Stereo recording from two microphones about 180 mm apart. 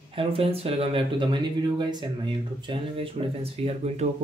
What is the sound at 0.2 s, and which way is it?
Speech, 30° right (ahead or behind).